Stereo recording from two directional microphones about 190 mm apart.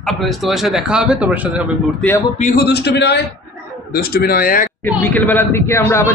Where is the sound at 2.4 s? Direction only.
55° left (ahead or behind).